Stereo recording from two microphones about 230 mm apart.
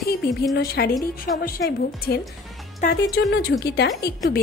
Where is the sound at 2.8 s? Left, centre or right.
Left.